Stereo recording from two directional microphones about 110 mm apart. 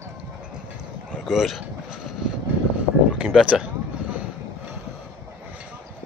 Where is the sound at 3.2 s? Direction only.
5° right (ahead or behind).